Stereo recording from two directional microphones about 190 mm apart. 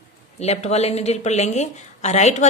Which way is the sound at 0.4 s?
35° left (ahead or behind).